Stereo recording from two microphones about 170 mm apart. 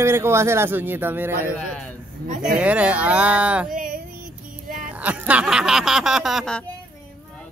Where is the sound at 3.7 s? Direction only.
55° right (ahead or behind).